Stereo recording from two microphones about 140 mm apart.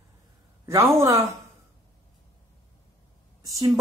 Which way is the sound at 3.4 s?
25° right (ahead or behind).